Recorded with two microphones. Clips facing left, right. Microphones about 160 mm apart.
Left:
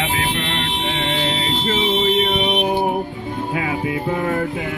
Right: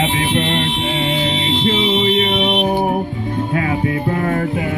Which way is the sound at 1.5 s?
45° left (ahead or behind).